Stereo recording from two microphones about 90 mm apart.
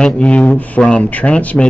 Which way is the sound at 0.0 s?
10° left (ahead or behind).